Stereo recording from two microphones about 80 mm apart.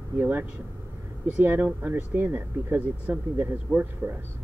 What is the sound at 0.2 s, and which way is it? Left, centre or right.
Speech, right.